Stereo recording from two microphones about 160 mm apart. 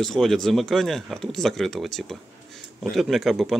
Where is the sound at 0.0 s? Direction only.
Centre (ahead or behind).